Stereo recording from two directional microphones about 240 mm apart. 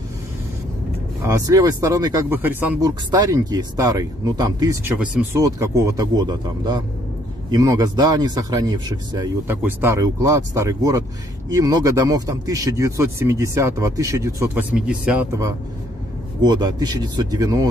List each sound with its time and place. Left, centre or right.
1.2 s speech: centre